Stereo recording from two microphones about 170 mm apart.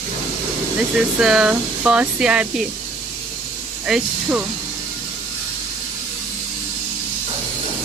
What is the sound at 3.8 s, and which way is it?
Speech, 10° right (ahead or behind).